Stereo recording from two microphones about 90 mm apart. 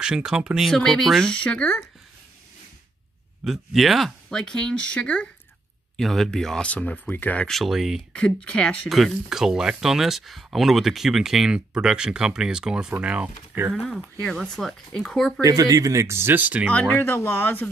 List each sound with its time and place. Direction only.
0.0 s speech: 10° right (ahead or behind)
0.7 s speech: 5° left (ahead or behind)
3.4 s speech: centre (ahead or behind)
5.9 s speech: 5° left (ahead or behind); by 7.4 s 20° left (ahead or behind)
7.4 s speech: centre (ahead or behind)
8.1 s speech: 10° left (ahead or behind)
8.8 s speech: centre (ahead or behind)
13.7 s speech: 5° left (ahead or behind)
15.4 s speech: 40° right (ahead or behind); by 16.7 s 20° right (ahead or behind)
16.7 s speech: 15° left (ahead or behind)